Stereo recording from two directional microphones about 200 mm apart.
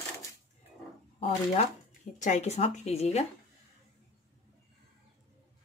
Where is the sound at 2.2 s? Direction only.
35° left (ahead or behind).